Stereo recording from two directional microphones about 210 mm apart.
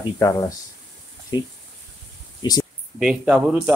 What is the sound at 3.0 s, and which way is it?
Speech, 5° right (ahead or behind).